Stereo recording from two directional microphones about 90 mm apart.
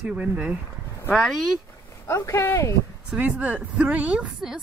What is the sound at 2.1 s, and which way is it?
Speech, 35° left (ahead or behind).